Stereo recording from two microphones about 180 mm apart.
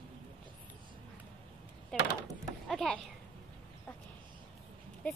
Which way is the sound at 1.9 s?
5° left (ahead or behind).